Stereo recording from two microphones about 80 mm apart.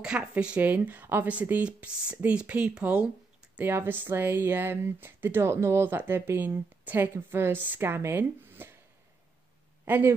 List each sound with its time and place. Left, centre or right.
0.0 s speech: centre
3.5 s speech: right
9.8 s speech: right